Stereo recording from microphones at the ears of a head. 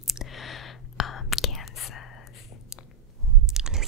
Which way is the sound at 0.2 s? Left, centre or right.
Left.